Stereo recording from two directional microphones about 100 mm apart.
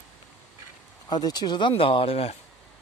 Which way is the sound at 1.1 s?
45° left (ahead or behind).